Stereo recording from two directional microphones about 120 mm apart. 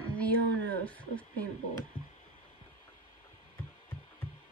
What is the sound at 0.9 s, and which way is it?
Speech, 10° left (ahead or behind).